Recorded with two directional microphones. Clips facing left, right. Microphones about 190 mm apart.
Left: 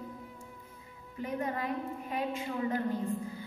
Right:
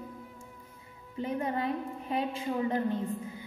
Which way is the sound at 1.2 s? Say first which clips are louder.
Right 3 dB; 25° right (ahead or behind).